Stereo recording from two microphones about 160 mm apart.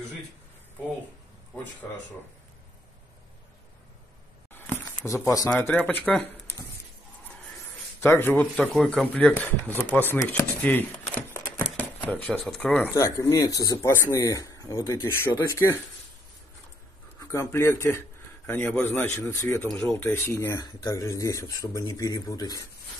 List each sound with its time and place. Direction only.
1.8 s speech: 10° left (ahead or behind)
4.7 s speech: 20° left (ahead or behind)
5.5 s speech: 10° left (ahead or behind)
8.0 s speech: 15° left (ahead or behind)
10.1 s a sound: 10° left (ahead or behind)
12.0 s speech: 10° left (ahead or behind)
12.9 s speech: 15° left (ahead or behind)
17.2 s speech: 20° left (ahead or behind)